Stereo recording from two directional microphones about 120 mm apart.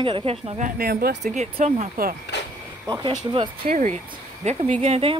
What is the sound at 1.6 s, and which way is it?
Speech, 90° right.